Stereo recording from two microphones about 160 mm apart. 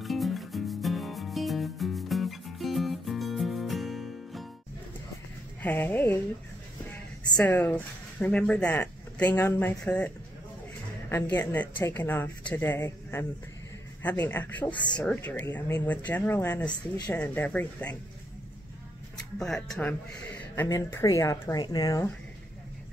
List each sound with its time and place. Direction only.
0.0 s music: centre (ahead or behind)
5.6 s speech: 10° left (ahead or behind)
19.3 s speech: 5° left (ahead or behind); by 22.0 s 25° left (ahead or behind)